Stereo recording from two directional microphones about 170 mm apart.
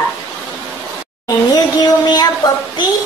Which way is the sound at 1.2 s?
25° left (ahead or behind).